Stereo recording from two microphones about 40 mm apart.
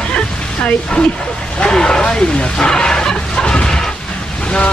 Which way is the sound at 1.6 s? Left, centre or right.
Left.